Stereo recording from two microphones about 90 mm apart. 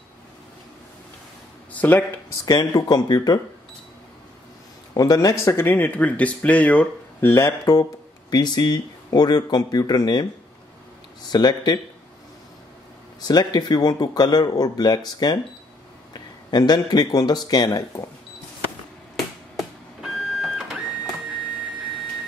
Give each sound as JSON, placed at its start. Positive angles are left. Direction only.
{"t": 1.7, "sound": "speech", "side_deg": 20}
{"t": 2.4, "sound": "speech", "side_deg": 45}
{"t": 4.9, "sound": "speech", "side_deg": 45}
{"t": 5.4, "sound": "speech", "side_deg": 30}
{"t": 7.2, "sound": "speech", "side_deg": 35}
{"t": 8.3, "sound": "speech", "side_deg": 50}
{"t": 11.2, "sound": "speech", "side_deg": 50}
{"t": 13.2, "sound": "speech", "side_deg": 50}
{"t": 19.5, "sound": "printer", "side_deg": -5}